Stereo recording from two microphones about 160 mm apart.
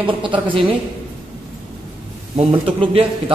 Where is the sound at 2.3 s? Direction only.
35° right (ahead or behind).